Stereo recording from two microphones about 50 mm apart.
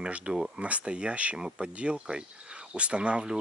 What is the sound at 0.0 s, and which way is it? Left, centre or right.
Speech, right.